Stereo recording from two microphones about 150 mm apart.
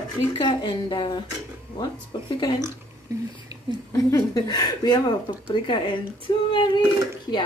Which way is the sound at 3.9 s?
20° left (ahead or behind).